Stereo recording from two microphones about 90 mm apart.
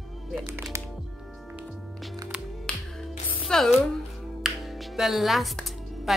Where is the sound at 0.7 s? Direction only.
30° right (ahead or behind).